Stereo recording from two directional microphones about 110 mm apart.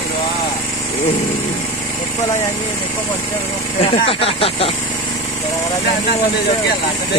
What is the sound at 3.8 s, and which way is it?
Speech, 60° left (ahead or behind).